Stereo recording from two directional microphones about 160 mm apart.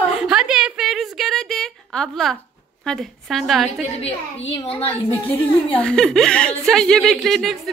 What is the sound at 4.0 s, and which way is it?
Speech, 35° left (ahead or behind).